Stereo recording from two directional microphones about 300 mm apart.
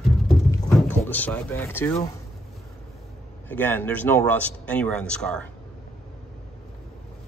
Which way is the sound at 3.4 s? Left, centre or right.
Centre.